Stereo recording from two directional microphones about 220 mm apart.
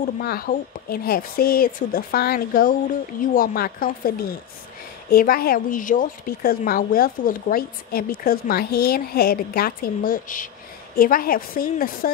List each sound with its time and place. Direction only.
0.2 s speech: 45° left (ahead or behind)